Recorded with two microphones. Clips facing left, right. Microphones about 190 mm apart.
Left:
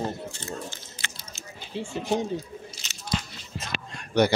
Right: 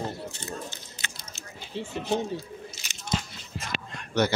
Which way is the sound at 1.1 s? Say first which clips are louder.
Left 1 dB; 10° left (ahead or behind).